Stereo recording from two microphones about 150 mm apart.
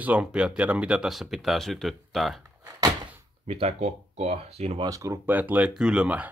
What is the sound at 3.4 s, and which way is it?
Speech, 45° right (ahead or behind).